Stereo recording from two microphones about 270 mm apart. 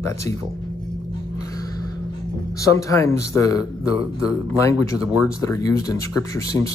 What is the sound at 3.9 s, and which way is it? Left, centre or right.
Speech, right.